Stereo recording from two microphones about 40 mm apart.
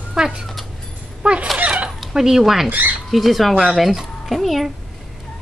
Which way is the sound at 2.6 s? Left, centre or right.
Right.